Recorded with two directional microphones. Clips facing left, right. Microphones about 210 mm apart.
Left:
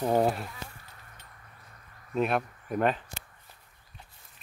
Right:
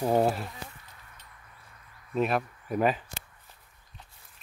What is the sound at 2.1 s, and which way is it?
Speech, centre (ahead or behind).